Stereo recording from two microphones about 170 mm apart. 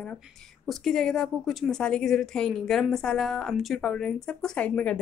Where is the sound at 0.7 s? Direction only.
5° left (ahead or behind).